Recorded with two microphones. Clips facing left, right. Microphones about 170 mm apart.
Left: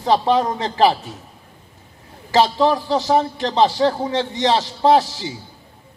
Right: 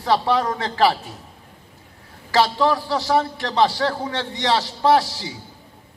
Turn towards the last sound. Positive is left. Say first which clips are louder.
# left 2 dB
turn(degrees=20)  # may be behind; listen again after turning